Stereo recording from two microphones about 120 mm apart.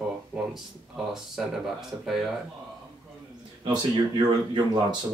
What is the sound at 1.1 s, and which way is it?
Speech, centre (ahead or behind).